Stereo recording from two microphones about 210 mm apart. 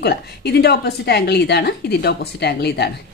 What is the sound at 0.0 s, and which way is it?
A woman's voice, 50° left (ahead or behind).